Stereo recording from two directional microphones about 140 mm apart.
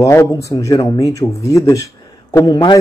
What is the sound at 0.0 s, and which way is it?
Speech, 20° left (ahead or behind).